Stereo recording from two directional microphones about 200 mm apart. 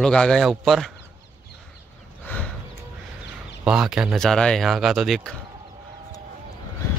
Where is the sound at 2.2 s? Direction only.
5° left (ahead or behind).